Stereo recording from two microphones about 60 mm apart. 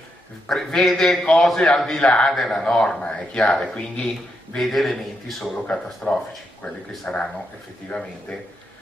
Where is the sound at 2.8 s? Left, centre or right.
Centre.